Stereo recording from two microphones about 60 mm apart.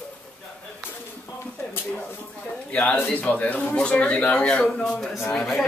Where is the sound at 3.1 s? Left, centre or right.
Left.